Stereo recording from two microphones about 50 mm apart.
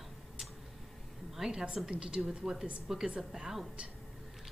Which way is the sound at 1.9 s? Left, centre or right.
Centre.